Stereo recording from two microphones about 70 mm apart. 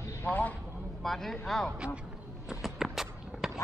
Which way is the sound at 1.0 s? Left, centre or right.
Centre.